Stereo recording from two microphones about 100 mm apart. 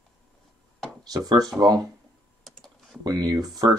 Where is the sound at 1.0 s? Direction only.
40° right (ahead or behind).